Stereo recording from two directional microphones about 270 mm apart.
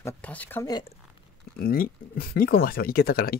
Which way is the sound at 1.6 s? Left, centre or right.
Left.